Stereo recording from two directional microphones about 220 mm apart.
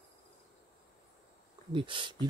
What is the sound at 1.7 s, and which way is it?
Speech, 20° right (ahead or behind).